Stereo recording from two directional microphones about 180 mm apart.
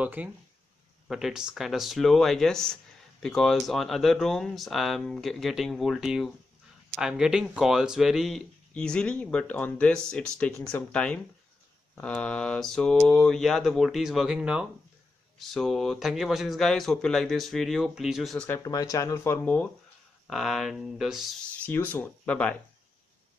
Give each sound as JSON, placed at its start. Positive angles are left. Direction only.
{"t": 0.0, "sound": "speech", "side_deg": -10}
{"t": 18.6, "sound": "speech", "side_deg": 20}